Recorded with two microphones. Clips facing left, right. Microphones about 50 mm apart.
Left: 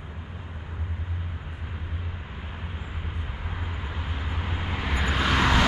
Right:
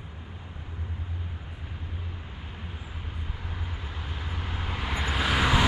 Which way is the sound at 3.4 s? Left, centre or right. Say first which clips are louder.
Left 4 dB; centre.